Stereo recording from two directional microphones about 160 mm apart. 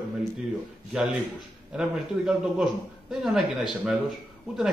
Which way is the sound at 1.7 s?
5° right (ahead or behind).